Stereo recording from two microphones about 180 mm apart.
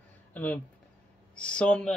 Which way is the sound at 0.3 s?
10° left (ahead or behind).